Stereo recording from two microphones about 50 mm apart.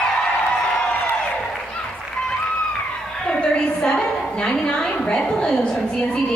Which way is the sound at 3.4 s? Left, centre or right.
Centre.